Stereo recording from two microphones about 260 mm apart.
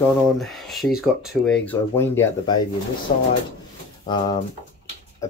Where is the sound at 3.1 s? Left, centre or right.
Left.